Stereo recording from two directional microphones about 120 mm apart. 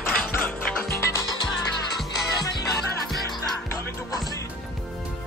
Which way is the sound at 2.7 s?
Centre (ahead or behind).